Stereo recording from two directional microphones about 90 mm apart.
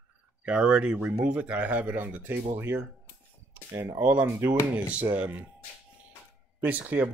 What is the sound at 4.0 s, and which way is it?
Speech, 20° right (ahead or behind).